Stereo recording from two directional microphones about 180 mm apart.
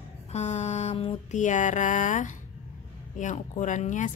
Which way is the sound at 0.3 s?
40° left (ahead or behind).